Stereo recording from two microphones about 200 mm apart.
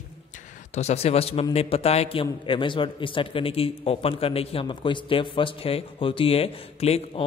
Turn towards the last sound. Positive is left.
turn(degrees=30)  # may be behind; listen again after turning